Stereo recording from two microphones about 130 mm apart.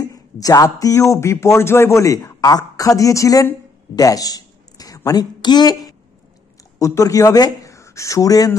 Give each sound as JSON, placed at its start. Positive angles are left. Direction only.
{"t": 0.0, "sound": "speech", "side_deg": 25}